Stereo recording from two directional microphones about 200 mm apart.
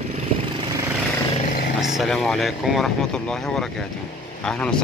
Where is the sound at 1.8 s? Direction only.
Centre (ahead or behind).